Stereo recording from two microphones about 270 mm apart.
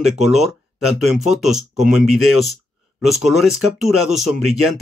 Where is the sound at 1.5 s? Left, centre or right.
Right.